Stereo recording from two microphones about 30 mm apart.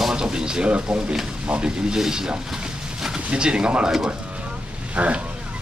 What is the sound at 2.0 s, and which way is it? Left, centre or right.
Speech, right.